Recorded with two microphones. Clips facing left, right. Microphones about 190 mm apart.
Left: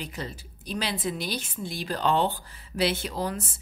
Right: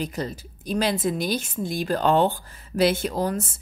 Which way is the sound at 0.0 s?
40° right (ahead or behind).